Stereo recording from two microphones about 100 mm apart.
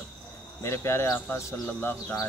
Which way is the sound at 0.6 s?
25° left (ahead or behind).